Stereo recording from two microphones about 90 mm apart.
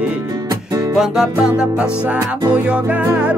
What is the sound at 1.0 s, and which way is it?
Music, 5° right (ahead or behind).